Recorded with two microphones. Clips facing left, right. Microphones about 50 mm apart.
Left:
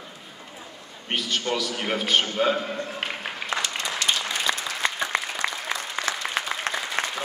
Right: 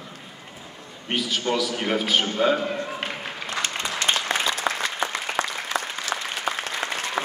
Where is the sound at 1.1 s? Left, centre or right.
Centre.